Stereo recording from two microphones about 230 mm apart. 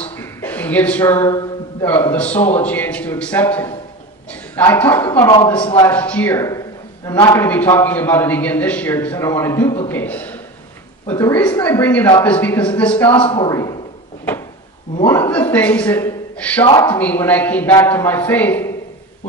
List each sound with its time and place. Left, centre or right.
0.0 s a man's voice: centre
5.9 s a man's voice: centre
13.2 s a man's voice: left
15.0 s a man's voice: centre